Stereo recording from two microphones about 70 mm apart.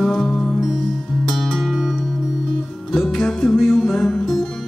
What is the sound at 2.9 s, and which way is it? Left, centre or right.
Music, centre.